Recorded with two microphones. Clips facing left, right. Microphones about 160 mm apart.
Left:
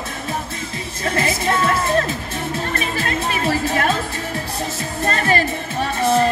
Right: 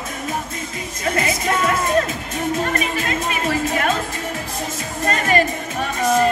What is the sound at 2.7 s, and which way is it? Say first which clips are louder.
Music: right 1 dB; 30° left (ahead or behind).